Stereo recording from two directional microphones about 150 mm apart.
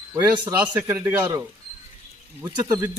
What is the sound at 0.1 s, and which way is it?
Speech, 20° right (ahead or behind).